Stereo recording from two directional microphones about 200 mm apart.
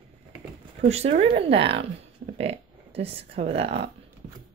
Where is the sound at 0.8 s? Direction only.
30° right (ahead or behind).